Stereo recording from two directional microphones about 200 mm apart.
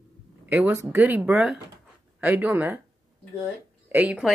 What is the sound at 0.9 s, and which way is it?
Speech, 10° right (ahead or behind).